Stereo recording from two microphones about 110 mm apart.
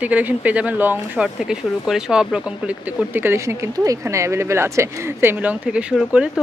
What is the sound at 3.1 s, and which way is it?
Speech, 20° right (ahead or behind).